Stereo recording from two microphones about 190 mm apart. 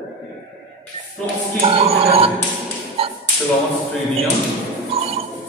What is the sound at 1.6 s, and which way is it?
Music, 30° right (ahead or behind).